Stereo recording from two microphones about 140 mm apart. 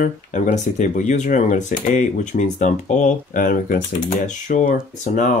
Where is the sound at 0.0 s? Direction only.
65° left (ahead or behind).